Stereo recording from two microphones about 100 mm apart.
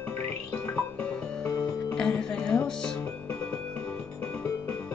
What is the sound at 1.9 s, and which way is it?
Music, 10° left (ahead or behind).